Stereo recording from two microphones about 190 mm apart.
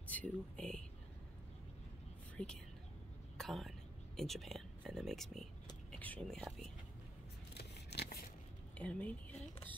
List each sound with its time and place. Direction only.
0.1 s speech: 5° left (ahead or behind)
2.3 s speech: 5° left (ahead or behind)
7.5 s scissors: 60° left (ahead or behind)
8.7 s speech: 5° left (ahead or behind)